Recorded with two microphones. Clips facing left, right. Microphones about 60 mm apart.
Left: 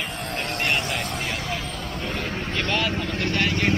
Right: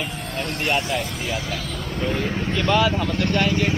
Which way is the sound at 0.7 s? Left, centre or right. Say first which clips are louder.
Right 4 dB; centre.